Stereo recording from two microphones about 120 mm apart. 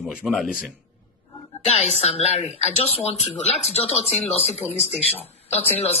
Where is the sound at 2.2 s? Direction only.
60° left (ahead or behind).